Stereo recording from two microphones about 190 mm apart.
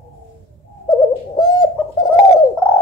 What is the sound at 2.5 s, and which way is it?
Pigeon, 10° left (ahead or behind).